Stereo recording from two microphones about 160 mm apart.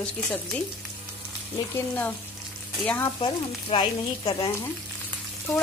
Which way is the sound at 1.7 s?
10° left (ahead or behind).